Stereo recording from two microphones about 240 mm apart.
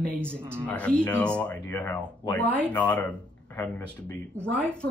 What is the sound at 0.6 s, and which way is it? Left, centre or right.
A man's voice, centre.